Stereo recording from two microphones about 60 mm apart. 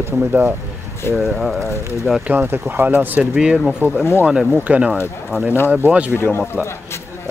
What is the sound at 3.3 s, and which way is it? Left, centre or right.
Speech, centre.